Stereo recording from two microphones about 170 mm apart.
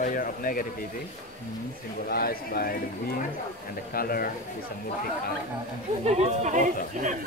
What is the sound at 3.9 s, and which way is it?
Speech, 60° left (ahead or behind).